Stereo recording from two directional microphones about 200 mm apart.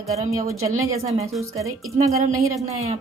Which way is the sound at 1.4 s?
15° right (ahead or behind).